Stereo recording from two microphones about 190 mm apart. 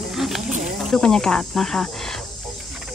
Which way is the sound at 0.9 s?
5° left (ahead or behind).